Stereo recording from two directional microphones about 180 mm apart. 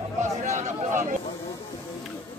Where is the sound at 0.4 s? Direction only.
45° right (ahead or behind).